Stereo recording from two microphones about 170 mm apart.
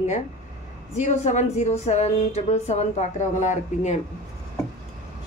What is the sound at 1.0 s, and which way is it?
Speech, 45° left (ahead or behind).